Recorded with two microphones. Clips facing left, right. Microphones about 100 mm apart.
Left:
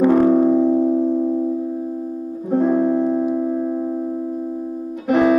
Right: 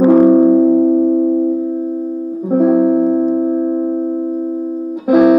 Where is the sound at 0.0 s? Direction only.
15° right (ahead or behind).